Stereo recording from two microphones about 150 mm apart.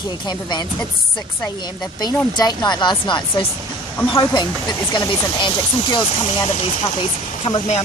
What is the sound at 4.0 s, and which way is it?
Speech, 15° left (ahead or behind).